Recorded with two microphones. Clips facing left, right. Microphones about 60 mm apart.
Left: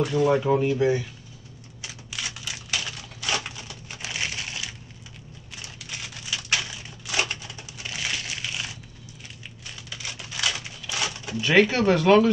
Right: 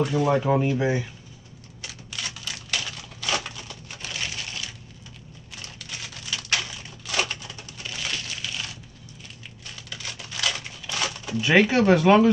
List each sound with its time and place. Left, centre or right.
0.0 s speech: centre
0.4 s speech: centre
1.8 s typewriter: centre
3.4 s crushing: centre
5.6 s typewriter: centre
7.1 s crushing: centre
9.8 s crumpling: centre
11.4 s speech: centre